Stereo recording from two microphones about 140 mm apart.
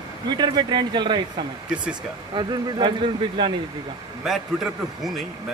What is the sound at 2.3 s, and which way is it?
Speech, 35° right (ahead or behind).